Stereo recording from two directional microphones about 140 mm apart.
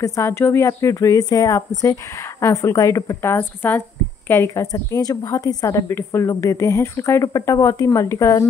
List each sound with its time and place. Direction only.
0.0 s a woman's voice: 20° left (ahead or behind)